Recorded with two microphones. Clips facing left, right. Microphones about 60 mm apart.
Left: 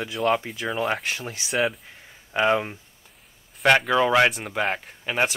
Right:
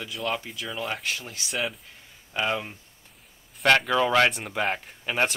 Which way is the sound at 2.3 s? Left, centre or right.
Left.